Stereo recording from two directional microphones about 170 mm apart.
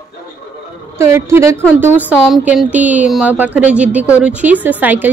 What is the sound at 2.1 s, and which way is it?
A woman's voice, centre (ahead or behind).